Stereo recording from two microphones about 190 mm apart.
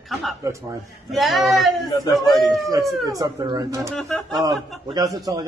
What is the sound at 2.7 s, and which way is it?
Speech, 15° right (ahead or behind).